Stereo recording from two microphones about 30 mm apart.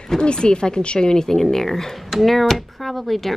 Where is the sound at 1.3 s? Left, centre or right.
Centre.